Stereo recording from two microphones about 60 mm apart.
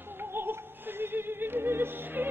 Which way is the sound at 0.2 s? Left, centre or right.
Right.